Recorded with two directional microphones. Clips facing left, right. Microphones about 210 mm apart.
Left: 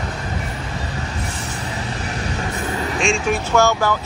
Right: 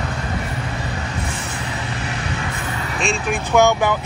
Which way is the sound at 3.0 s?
5° right (ahead or behind).